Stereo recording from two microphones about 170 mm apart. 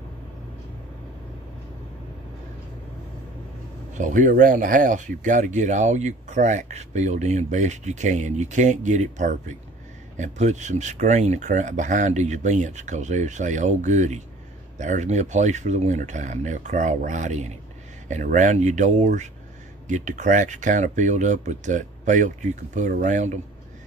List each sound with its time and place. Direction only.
4.0 s speech: 50° right (ahead or behind)